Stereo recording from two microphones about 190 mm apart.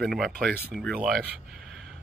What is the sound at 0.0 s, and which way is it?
Speech, centre (ahead or behind).